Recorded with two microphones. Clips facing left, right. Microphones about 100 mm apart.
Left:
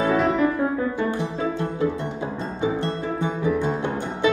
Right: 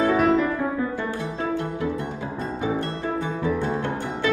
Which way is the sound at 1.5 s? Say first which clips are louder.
Left 2 dB; 25° left (ahead or behind).